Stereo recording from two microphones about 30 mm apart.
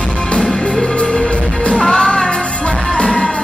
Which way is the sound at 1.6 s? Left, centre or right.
Left.